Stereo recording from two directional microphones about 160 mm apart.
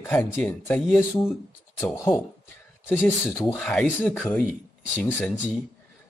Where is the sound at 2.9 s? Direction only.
15° left (ahead or behind).